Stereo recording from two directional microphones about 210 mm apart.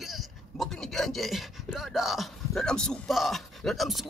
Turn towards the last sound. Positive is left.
turn(degrees=0)  # may be behind; listen again after turning